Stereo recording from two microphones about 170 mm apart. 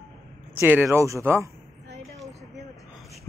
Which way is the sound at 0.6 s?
15° right (ahead or behind).